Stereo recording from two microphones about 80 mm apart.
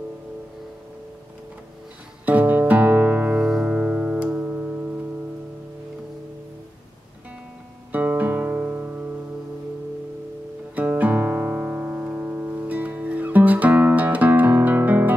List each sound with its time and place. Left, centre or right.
2.2 s music: right
7.9 s music: right
10.8 s music: centre